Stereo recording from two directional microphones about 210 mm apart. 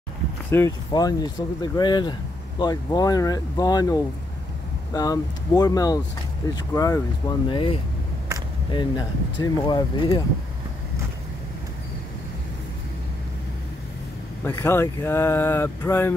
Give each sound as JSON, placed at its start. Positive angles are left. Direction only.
{"t": 0.5, "sound": "speech", "side_deg": 15}
{"t": 14.4, "sound": "speech", "side_deg": 10}